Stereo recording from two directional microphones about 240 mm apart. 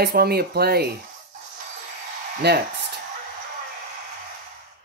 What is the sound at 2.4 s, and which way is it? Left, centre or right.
Speech, right.